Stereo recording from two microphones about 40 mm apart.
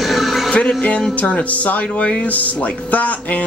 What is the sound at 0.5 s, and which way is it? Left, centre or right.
Speech, left.